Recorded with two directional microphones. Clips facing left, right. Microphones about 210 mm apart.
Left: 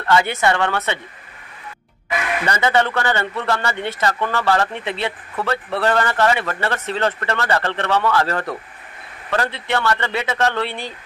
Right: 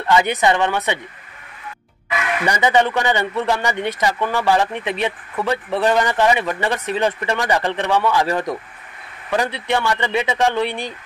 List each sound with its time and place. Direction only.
0.0 s speech: 15° right (ahead or behind)
2.4 s speech: 15° right (ahead or behind)